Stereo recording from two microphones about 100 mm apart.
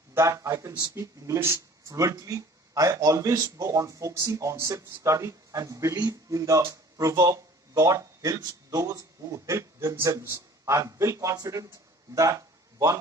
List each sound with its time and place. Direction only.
0.1 s speech: 30° right (ahead or behind)